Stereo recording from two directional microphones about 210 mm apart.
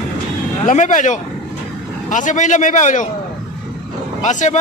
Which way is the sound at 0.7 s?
35° left (ahead or behind).